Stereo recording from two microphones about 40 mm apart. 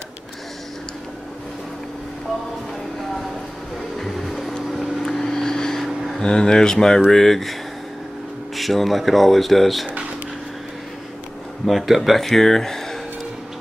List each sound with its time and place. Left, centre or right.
4.0 s music: centre
5.0 s vehicle: centre
5.8 s a sound: centre
6.1 s speech: centre
8.5 s speech: centre
11.6 s speech: centre